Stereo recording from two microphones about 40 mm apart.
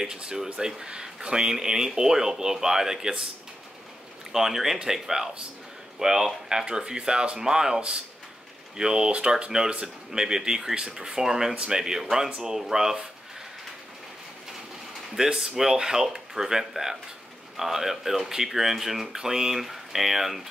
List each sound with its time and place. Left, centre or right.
0.0 s speech: centre
4.3 s speech: centre
12.5 s speech: centre
15.1 s speech: centre